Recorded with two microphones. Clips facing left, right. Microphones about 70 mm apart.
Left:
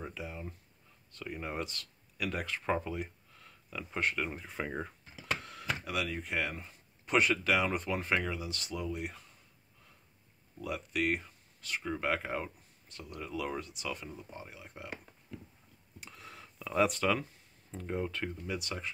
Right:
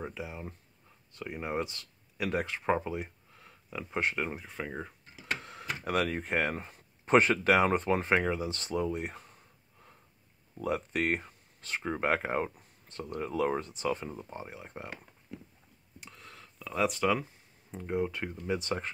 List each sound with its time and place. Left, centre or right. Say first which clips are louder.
0.0 s speech: right 3 dB; centre
4.4 s speech: left 1 dB; centre
5.4 s computer keyboard: right 2 dB; right
5.9 s speech: right 10 dB; right
10.6 s speech: right 3 dB; right
16.0 s a sound: left 1 dB; centre
17.1 s speech: right 2 dB; centre
18.6 s speech: right 6 dB; right